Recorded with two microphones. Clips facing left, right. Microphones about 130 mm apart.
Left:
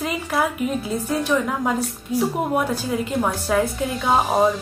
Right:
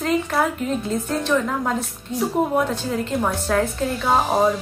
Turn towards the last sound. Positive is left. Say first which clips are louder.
# even
turn(degrees=0)  # may be behind; listen again after turning